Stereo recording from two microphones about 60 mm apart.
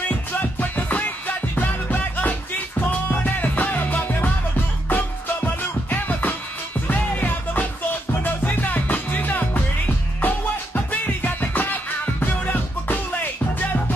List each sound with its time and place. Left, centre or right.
0.1 s music: left